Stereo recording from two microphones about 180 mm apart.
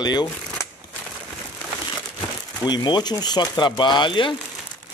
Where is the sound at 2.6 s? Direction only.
25° left (ahead or behind).